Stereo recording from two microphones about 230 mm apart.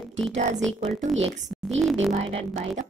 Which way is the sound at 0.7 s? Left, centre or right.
Right.